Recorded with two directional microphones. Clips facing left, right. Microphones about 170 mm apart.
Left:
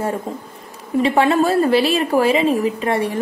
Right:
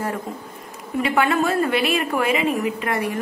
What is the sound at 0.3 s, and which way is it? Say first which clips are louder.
A woman's voice: left 3 dB; 25° left (ahead or behind).